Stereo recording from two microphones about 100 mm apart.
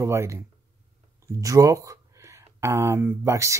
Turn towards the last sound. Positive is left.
turn(degrees=-30)  # may be behind; listen again after turning